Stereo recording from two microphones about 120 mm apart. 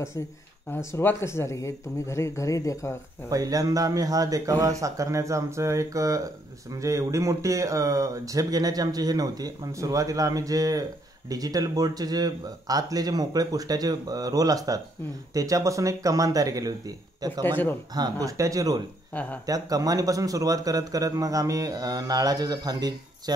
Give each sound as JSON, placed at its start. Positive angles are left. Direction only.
{"t": 0.7, "sound": "speech", "side_deg": 20}
{"t": 3.3, "sound": "a man's voice", "side_deg": -30}
{"t": 17.4, "sound": "speech", "side_deg": 15}
{"t": 17.9, "sound": "a man's voice", "side_deg": -30}
{"t": 19.1, "sound": "speech", "side_deg": 10}
{"t": 19.4, "sound": "a man's voice", "side_deg": -30}